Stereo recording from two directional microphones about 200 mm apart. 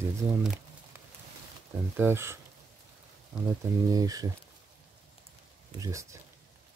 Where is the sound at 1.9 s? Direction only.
10° right (ahead or behind).